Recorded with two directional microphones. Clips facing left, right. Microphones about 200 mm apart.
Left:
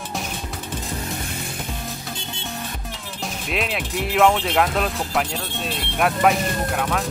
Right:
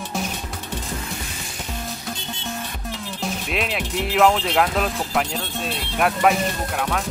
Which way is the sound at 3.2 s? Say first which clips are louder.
Even; centre (ahead or behind).